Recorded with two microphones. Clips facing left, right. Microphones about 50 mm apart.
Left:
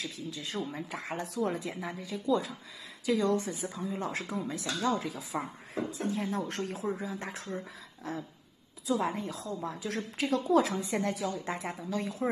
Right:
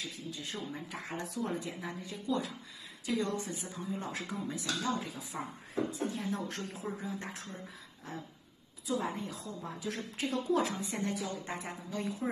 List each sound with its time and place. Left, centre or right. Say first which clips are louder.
0.0 s a woman's voice: left 3 dB; left
5.9 s speech: left 3 dB; left
7.0 s a woman's voice: left 3 dB; left
8.8 s a woman's voice: left 4 dB; left